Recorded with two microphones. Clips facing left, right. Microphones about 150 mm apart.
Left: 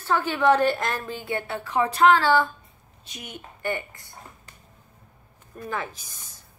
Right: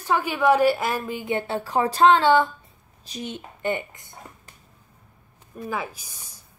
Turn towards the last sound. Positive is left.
turn(degrees=-10)  # may be behind; listen again after turning